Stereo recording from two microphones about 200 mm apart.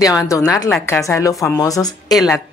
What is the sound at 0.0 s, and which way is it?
A woman's voice, 15° left (ahead or behind).